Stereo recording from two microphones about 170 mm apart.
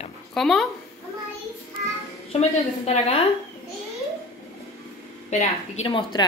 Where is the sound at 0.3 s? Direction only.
Centre (ahead or behind).